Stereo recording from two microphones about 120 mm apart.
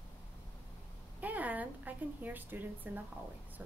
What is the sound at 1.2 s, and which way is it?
A woman's voice, 15° right (ahead or behind).